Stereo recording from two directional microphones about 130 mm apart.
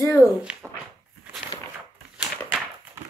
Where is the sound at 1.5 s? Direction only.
45° left (ahead or behind).